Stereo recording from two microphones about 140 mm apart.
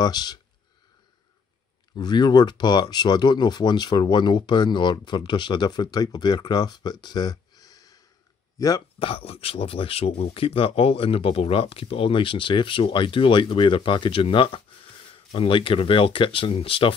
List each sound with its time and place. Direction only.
0.0 s speech: 30° left (ahead or behind)
2.0 s speech: 30° left (ahead or behind)
9.0 s speech: 45° left (ahead or behind)